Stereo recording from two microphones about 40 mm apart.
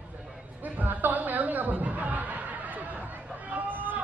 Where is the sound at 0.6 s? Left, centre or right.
Right.